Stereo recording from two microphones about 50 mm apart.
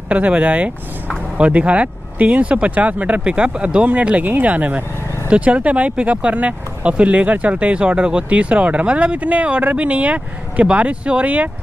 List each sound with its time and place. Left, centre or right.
0.1 s speech: right